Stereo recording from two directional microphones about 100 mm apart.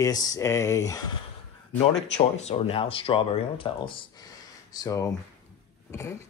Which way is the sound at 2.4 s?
70° left (ahead or behind).